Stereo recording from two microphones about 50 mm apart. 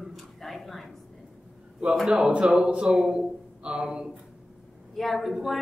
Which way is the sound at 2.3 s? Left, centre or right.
Centre.